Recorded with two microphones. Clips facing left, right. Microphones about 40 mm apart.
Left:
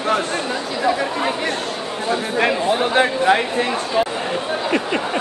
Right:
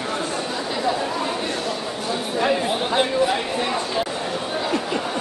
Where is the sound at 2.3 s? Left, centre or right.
Left.